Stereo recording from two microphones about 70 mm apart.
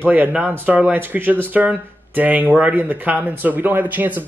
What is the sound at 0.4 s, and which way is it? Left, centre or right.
Speech, right.